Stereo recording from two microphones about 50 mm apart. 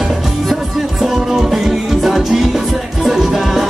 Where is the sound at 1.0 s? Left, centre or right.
Centre.